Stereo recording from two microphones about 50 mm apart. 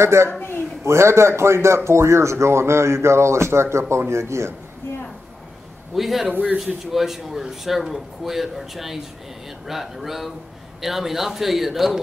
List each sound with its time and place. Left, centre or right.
0.0 s speech: right
0.3 s speech: left
0.8 s a man's voice: right
5.9 s a man's voice: centre